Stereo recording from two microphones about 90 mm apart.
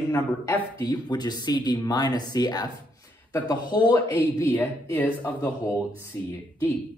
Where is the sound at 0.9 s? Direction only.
50° left (ahead or behind).